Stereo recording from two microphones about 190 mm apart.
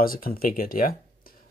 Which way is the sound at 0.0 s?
50° left (ahead or behind).